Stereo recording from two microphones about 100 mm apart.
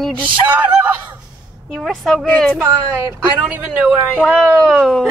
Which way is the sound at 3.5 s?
10° right (ahead or behind).